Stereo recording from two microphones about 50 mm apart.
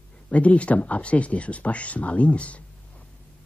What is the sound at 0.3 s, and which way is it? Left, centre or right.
Speech, left.